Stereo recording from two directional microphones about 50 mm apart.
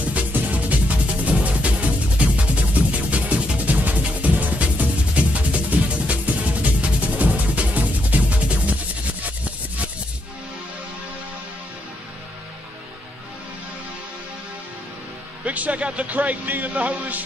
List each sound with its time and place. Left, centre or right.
0.1 s music: right
15.4 s a man's voice: right